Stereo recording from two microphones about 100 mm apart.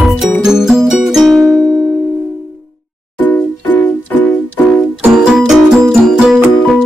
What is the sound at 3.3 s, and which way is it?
Music, 15° left (ahead or behind).